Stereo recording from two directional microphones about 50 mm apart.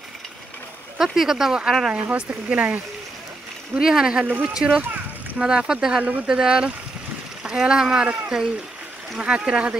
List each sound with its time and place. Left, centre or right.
0.9 s speech: centre
1.9 s speech: right
3.7 s speech: centre
9.2 s speech: centre